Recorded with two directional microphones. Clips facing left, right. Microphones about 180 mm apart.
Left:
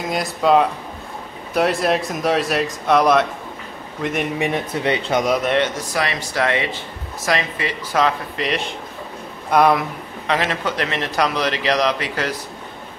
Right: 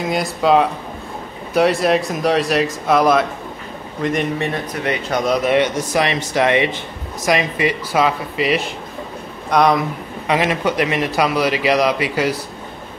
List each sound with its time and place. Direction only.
0.1 s speech: centre (ahead or behind)
4.8 s speech: 30° left (ahead or behind)
5.4 s a man's voice: 10° right (ahead or behind)
5.9 s a man's voice: 20° right (ahead or behind)
9.5 s speech: 5° left (ahead or behind)
10.2 s a man's voice: 10° right (ahead or behind)